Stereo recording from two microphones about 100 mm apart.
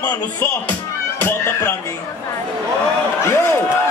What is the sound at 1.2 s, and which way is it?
Speech, 20° left (ahead or behind).